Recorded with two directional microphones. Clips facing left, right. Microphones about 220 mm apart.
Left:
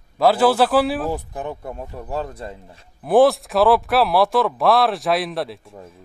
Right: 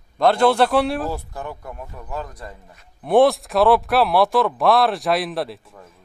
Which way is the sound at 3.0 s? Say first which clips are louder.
Left 1 dB; centre (ahead or behind).